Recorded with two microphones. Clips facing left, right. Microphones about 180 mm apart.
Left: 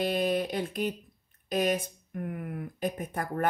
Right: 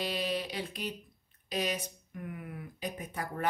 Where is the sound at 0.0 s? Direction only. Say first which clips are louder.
Left 6 dB; 50° left (ahead or behind).